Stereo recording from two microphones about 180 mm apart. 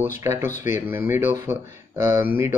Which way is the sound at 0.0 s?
15° right (ahead or behind).